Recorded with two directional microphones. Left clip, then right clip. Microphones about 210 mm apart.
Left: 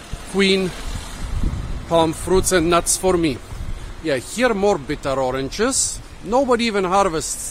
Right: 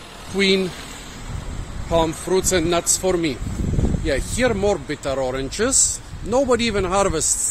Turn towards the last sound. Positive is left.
turn(degrees=0)  # may be behind; listen again after turning